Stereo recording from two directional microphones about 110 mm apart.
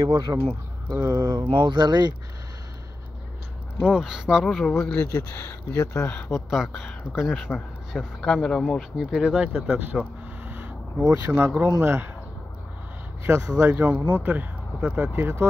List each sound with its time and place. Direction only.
0.0 s speech: 30° right (ahead or behind)
1.2 s speech: 45° right (ahead or behind)
3.8 s speech: 5° right (ahead or behind)
4.6 s speech: 5° left (ahead or behind)
5.0 s speech: 25° left (ahead or behind)
6.0 s speech: 10° left (ahead or behind)
6.5 s speech: centre (ahead or behind)
8.9 s speech: 5° right (ahead or behind)
11.1 s speech: 20° right (ahead or behind)
13.2 s speech: 25° right (ahead or behind)